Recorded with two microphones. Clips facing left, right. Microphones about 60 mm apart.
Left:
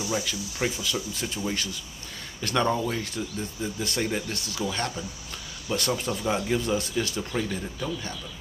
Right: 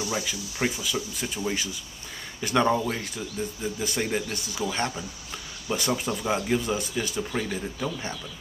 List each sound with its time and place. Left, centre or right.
0.1 s speech: centre
4.7 s speech: right
7.4 s speech: right